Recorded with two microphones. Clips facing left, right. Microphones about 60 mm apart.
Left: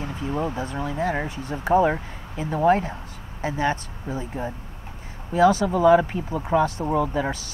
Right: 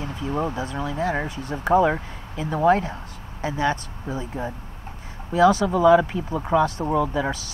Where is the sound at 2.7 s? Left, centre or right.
Left.